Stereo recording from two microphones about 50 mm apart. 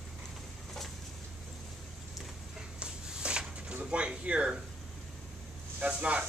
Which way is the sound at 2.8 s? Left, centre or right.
Centre.